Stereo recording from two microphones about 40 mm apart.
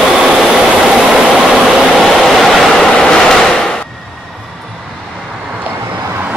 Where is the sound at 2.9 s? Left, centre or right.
Centre.